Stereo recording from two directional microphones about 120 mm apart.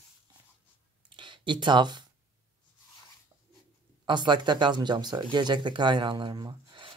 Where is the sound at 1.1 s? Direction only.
40° right (ahead or behind).